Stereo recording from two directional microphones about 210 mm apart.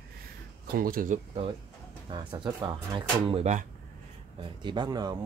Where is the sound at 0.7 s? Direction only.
45° right (ahead or behind).